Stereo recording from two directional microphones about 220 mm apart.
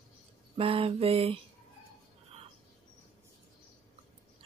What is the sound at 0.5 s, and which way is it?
Speech, 25° right (ahead or behind).